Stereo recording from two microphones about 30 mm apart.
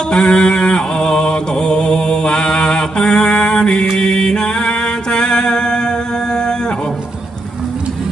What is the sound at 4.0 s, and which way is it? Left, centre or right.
Music, left.